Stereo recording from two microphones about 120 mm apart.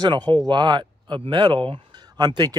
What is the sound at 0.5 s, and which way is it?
Speech, 40° right (ahead or behind).